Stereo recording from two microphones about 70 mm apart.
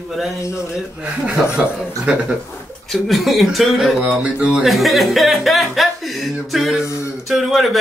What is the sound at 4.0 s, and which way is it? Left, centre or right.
Speech, right.